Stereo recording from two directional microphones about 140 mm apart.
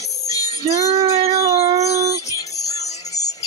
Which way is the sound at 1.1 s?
45° right (ahead or behind).